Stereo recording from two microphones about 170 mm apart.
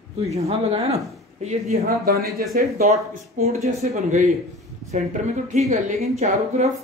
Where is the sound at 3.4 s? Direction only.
40° right (ahead or behind).